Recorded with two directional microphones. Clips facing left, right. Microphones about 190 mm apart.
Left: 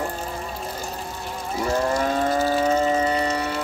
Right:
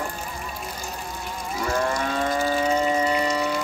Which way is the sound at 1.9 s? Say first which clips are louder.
Left 3 dB; 40° left (ahead or behind).